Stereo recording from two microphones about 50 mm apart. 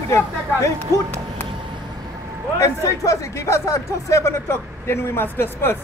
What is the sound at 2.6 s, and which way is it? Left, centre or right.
Speech, left.